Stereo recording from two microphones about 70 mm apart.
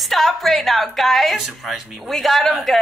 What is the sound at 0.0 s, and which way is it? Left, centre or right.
A woman's voice, centre.